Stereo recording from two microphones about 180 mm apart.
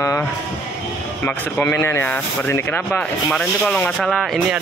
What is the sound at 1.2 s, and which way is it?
Speech, 10° left (ahead or behind).